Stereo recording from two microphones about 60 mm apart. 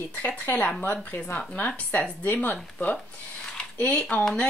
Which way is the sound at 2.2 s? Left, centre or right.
Left.